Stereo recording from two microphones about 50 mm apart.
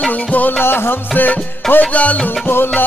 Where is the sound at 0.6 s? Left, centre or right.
Left.